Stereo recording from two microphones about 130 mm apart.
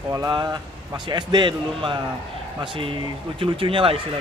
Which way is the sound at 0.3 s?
35° right (ahead or behind).